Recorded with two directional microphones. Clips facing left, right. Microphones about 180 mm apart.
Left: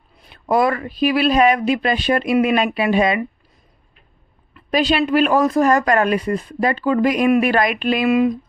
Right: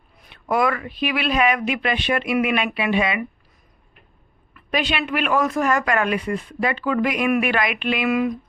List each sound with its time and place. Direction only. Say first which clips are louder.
0.2 s speech: left 4 dB; 35° left (ahead or behind)
4.6 s speech: left 6 dB; 35° left (ahead or behind)
8.1 s a sound: left 6 dB; 25° left (ahead or behind)